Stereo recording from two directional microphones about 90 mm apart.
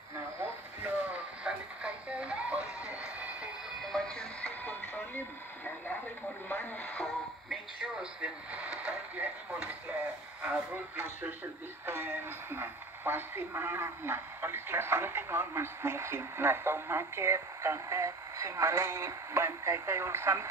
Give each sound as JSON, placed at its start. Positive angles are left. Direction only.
{"t": 0.4, "sound": "radio", "side_deg": -15}
{"t": 3.8, "sound": "music", "side_deg": 5}
{"t": 6.5, "sound": "radio", "side_deg": 20}
{"t": 7.4, "sound": "television", "side_deg": -10}
{"t": 10.4, "sound": "speech", "side_deg": -20}